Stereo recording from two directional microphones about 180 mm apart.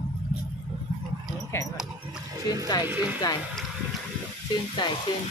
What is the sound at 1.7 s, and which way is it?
Dog, 5° right (ahead or behind).